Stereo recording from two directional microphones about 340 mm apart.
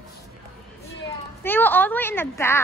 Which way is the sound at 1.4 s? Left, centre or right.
Centre.